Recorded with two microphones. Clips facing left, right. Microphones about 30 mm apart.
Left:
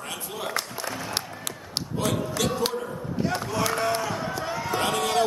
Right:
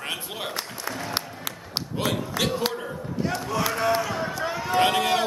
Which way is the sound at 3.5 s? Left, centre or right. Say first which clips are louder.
Right 4 dB; centre.